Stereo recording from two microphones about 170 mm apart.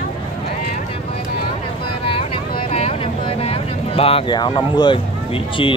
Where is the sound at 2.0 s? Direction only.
30° left (ahead or behind).